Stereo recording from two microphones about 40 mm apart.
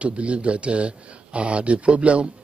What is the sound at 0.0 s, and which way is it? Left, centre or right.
Speech, right.